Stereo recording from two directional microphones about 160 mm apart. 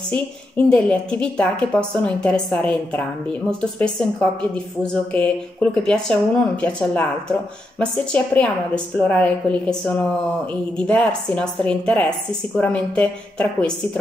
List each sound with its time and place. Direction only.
0.1 s a woman's voice: 10° left (ahead or behind)